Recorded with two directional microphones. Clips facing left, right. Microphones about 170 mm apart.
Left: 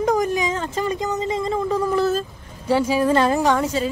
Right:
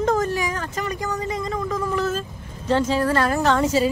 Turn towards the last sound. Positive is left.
turn(degrees=0)  # may be behind; listen again after turning